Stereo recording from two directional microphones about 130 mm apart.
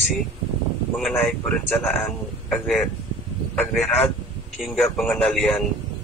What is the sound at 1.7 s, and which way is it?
Speech, 15° left (ahead or behind).